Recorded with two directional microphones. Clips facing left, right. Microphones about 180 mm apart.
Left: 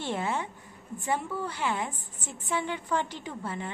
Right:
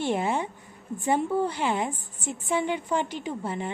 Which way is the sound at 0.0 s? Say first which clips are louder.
Right 5 dB; 15° right (ahead or behind).